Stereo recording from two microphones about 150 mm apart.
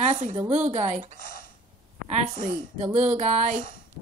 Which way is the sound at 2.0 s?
45° right (ahead or behind).